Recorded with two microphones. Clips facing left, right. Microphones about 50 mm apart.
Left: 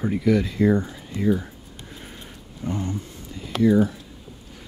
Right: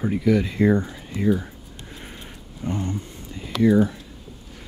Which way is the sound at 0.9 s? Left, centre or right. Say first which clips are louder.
Right 1 dB; right.